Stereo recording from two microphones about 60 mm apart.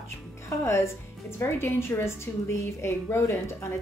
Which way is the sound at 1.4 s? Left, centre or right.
Left.